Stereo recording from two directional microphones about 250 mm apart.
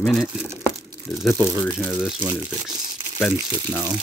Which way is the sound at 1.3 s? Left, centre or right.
Centre.